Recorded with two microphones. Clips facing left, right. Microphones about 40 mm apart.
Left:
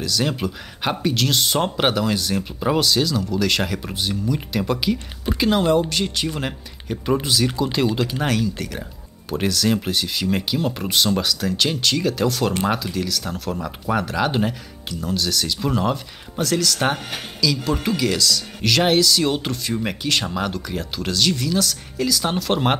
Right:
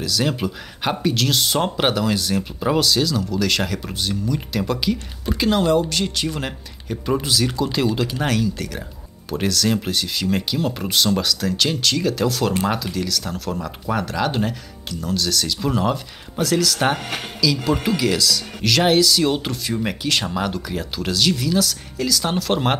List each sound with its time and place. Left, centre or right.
0.0 s speech: centre